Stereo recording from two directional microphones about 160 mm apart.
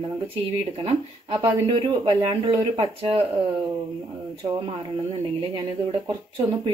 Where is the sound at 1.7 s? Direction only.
30° right (ahead or behind).